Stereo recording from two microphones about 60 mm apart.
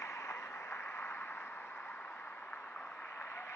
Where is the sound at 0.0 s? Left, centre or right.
Left.